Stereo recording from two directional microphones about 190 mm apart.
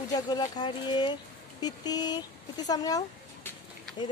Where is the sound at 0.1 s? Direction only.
20° left (ahead or behind).